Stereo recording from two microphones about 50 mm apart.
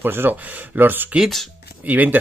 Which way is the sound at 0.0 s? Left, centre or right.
Right.